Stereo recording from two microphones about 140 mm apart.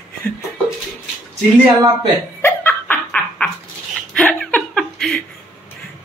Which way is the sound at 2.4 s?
15° left (ahead or behind).